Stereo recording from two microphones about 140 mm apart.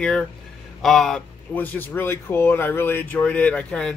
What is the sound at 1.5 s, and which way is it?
A man's voice, 15° left (ahead or behind).